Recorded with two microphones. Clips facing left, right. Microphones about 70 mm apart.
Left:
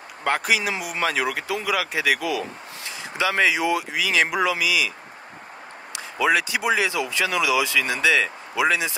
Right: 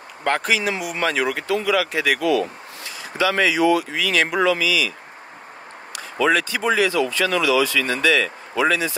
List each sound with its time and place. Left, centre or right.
0.2 s speech: centre
3.0 s speech: left
5.9 s speech: centre